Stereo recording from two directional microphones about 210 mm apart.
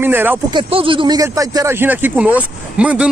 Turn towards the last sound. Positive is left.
turn(degrees=-5)  # may be behind; listen again after turning